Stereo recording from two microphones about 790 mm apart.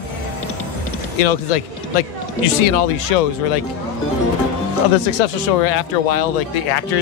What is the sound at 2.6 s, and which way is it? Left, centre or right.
Speech, left.